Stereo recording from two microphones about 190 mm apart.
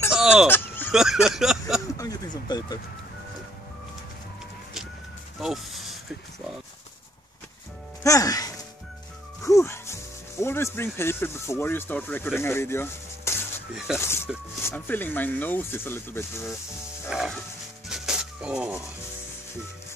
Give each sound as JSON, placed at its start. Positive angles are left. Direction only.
{"t": 0.1, "sound": "fowl", "side_deg": -5}
{"t": 0.5, "sound": "fowl", "side_deg": 10}
{"t": 0.9, "sound": "speech", "side_deg": 0}
{"t": 2.0, "sound": "speech", "side_deg": 20}
{"t": 5.4, "sound": "speech", "side_deg": 0}
{"t": 8.0, "sound": "speech", "side_deg": 15}
{"t": 17.1, "sound": "speech", "side_deg": -5}
{"t": 17.8, "sound": "a sound", "side_deg": -5}